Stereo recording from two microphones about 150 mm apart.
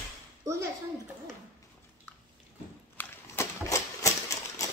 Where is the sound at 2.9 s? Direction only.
15° left (ahead or behind).